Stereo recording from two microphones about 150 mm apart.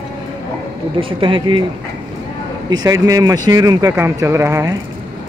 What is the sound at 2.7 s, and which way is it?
Speech, 25° right (ahead or behind).